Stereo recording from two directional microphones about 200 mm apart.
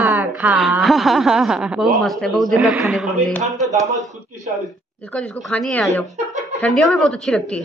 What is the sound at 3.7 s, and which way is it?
Speech, 15° right (ahead or behind).